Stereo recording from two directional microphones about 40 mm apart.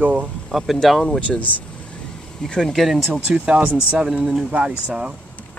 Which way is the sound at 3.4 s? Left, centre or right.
Right.